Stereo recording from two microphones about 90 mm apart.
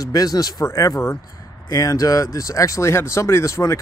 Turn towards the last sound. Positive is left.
turn(degrees=30)  # may be behind; listen again after turning